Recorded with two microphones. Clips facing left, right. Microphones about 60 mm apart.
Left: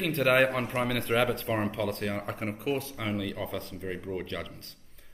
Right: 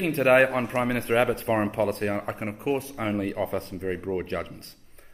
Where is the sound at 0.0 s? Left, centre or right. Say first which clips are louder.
Right 4 dB; right.